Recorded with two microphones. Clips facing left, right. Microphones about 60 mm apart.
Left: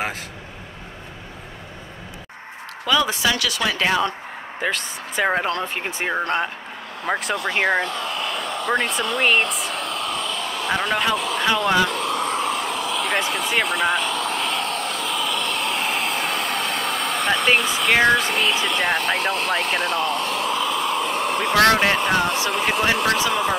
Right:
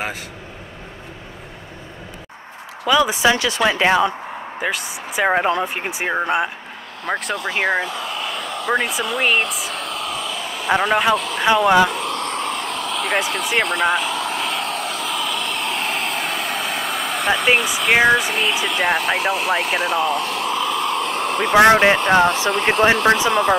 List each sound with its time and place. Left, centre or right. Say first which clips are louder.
2.9 s speech: right 4 dB; centre
4.6 s speech: even; centre
7.1 s speech: even; centre
11.1 s vehicle: even; centre
11.4 s speech: right 6 dB; centre
12.0 s vehicle: left 1 dB; centre
22.5 s speech: right 5 dB; centre
23.0 s speech: right 5 dB; centre